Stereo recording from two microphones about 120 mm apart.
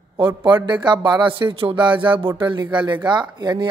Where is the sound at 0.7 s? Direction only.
40° right (ahead or behind).